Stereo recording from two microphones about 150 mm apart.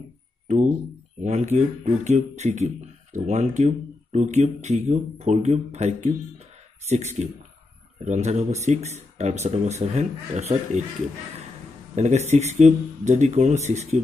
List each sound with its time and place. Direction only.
1.2 s speech: 50° right (ahead or behind)
11.9 s speech: 50° right (ahead or behind)